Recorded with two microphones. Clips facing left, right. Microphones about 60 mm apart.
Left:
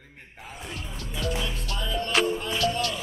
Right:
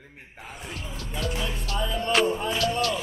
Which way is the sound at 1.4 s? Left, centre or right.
Centre.